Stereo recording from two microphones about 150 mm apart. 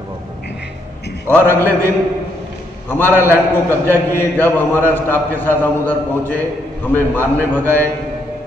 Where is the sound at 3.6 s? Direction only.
15° left (ahead or behind).